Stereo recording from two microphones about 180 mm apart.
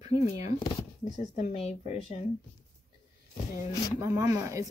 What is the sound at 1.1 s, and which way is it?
Speech, 45° left (ahead or behind).